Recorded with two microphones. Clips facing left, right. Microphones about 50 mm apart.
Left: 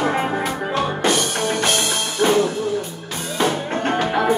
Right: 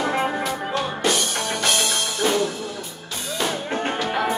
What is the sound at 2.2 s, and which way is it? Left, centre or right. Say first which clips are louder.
Music: left 6 dB; left.